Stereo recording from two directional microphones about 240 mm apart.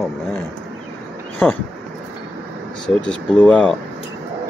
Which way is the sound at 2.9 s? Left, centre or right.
Centre.